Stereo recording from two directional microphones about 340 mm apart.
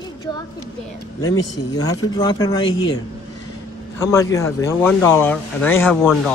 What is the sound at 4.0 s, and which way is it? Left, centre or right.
Speech, centre.